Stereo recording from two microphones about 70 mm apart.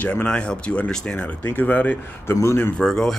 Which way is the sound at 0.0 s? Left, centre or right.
Left.